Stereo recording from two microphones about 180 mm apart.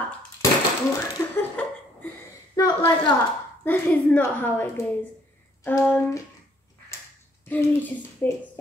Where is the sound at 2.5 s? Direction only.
20° left (ahead or behind).